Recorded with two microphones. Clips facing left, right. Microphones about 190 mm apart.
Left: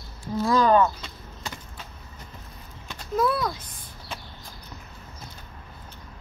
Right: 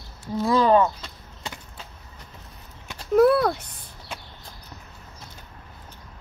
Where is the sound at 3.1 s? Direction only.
65° right (ahead or behind).